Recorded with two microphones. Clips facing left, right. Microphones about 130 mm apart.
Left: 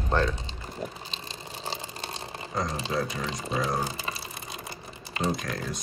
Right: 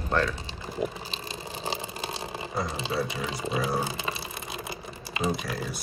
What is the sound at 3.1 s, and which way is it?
Speech, 5° right (ahead or behind).